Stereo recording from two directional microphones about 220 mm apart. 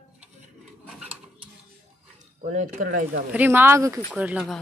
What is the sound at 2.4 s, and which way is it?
Speech, 35° right (ahead or behind).